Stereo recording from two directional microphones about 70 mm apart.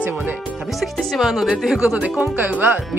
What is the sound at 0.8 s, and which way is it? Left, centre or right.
Speech, centre.